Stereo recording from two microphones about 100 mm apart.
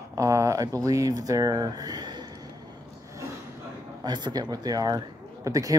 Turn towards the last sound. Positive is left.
turn(degrees=-35)  # may be behind; listen again after turning